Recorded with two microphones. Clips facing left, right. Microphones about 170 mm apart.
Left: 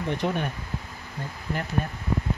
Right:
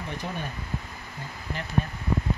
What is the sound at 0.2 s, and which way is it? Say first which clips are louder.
Speech: left 9 dB; 65° left (ahead or behind).